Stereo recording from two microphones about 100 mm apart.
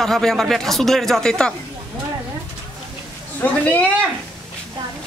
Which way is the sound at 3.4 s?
15° left (ahead or behind).